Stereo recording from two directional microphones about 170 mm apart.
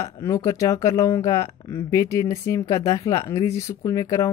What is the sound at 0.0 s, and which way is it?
Speech, 15° left (ahead or behind).